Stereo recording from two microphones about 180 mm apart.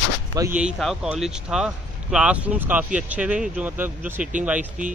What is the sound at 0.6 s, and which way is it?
Speech, centre (ahead or behind).